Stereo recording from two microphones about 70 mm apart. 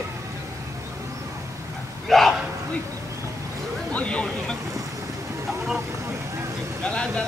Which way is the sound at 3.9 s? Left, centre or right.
Centre.